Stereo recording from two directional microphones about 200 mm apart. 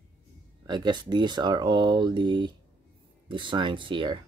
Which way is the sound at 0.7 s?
20° right (ahead or behind).